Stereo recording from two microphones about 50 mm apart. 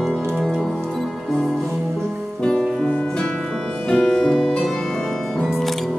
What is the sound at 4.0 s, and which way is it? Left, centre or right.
Music, centre.